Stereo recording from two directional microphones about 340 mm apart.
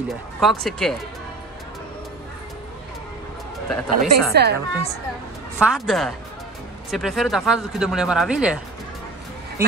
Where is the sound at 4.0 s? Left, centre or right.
Right.